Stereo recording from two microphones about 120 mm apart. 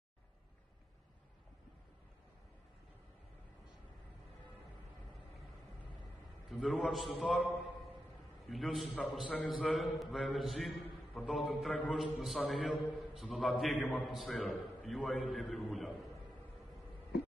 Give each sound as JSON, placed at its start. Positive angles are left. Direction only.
{"t": 6.5, "sound": "a man's voice", "side_deg": 0}
{"t": 8.5, "sound": "a man's voice", "side_deg": 0}